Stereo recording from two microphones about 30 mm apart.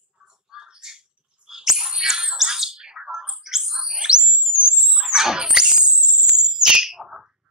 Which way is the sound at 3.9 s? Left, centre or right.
Right.